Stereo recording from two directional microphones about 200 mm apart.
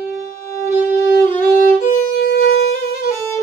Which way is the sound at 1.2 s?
10° left (ahead or behind).